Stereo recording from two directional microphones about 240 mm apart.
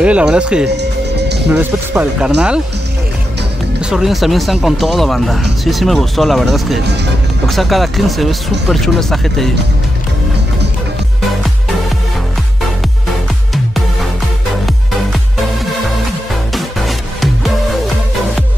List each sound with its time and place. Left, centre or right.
0.0 s speech: centre
0.7 s music: right
1.5 s speech: centre
3.9 s speech: centre
16.5 s music: centre